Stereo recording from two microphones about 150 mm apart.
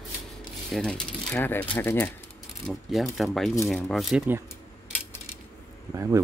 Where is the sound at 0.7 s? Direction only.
5° left (ahead or behind).